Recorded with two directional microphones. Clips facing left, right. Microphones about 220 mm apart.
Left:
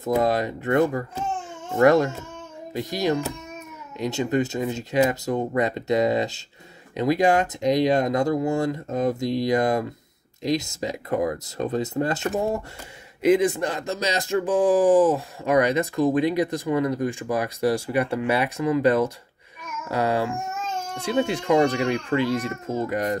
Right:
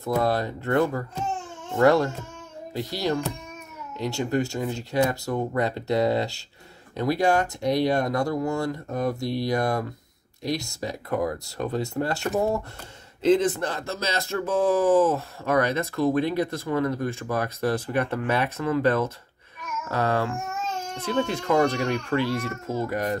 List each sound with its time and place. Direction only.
0.0 s speech: 15° left (ahead or behind)